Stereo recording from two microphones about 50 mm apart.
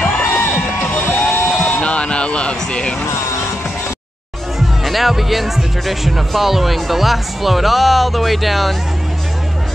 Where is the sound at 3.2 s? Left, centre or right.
Left.